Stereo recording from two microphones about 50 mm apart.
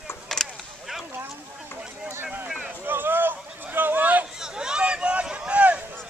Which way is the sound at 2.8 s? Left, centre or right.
Right.